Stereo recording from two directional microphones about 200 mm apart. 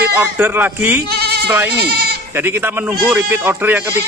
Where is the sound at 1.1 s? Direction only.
55° right (ahead or behind).